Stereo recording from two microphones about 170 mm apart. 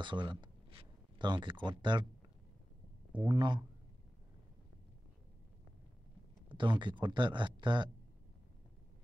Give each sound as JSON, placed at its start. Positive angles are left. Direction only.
{"t": 0.0, "sound": "speech", "side_deg": -30}
{"t": 3.3, "sound": "speech", "side_deg": -25}
{"t": 6.5, "sound": "speech", "side_deg": -30}